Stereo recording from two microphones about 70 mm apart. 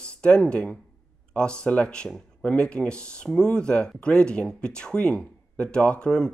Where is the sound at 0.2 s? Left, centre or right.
Centre.